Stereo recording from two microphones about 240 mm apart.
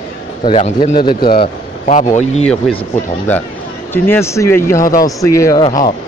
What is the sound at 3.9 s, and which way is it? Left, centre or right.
Speech, centre.